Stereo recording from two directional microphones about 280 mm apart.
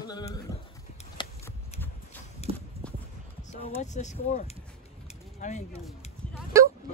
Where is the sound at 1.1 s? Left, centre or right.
Centre.